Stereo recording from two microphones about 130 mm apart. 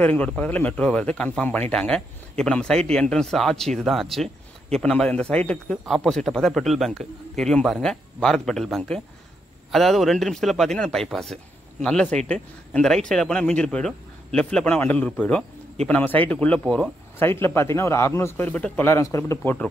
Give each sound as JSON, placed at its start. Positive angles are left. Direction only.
{"t": 0.0, "sound": "speech", "side_deg": 10}
{"t": 17.2, "sound": "a man's voice", "side_deg": 20}